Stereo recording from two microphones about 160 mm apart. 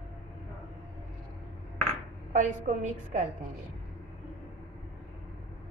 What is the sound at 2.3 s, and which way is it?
Speech, 50° right (ahead or behind).